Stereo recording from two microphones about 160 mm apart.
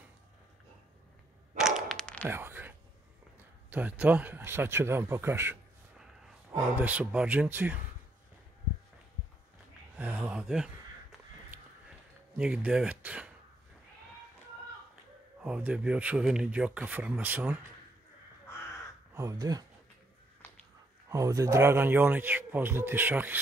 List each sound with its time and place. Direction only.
1.6 s a sound: 5° left (ahead or behind)
2.2 s a sound: 15° right (ahead or behind)
3.7 s a man's voice: 10° right (ahead or behind)
6.8 s a man's voice: 10° right (ahead or behind)
9.9 s a sound: 10° right (ahead or behind)
12.4 s a man's voice: 5° right (ahead or behind)
15.4 s a man's voice: 5° right (ahead or behind)
19.1 s speech: 20° right (ahead or behind)
21.1 s a man's voice: 20° right (ahead or behind)